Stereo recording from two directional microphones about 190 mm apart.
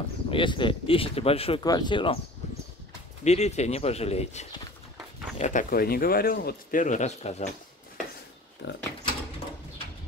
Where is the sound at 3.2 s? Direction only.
35° left (ahead or behind).